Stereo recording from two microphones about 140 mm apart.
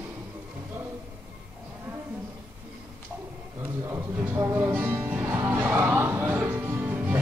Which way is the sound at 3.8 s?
15° right (ahead or behind).